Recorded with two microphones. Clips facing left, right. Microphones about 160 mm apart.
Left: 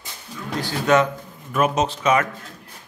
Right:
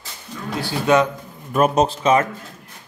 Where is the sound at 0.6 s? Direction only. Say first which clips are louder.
Right 1 dB; 15° right (ahead or behind).